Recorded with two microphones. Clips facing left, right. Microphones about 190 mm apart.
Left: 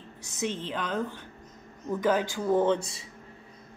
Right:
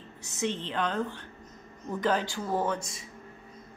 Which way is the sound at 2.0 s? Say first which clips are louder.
Left 3 dB; 15° left (ahead or behind).